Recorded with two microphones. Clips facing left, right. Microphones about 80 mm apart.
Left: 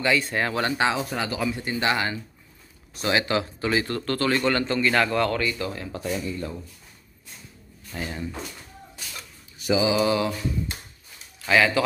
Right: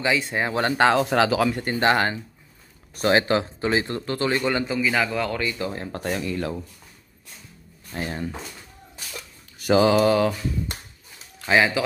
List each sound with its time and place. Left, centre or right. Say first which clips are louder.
0.0 s speech: even; centre
0.6 s speech: right 6 dB; right
0.8 s speech: right 7 dB; right
1.5 s mantra: right 4 dB; right
3.0 s a man's voice: right 4 dB; right; by 5.4 s centre
5.4 s speech: even; right
5.9 s speech: right 2 dB; right
7.9 s speech: right 3 dB; right
9.6 s mantra: right 4 dB; right
11.4 s speech: even; right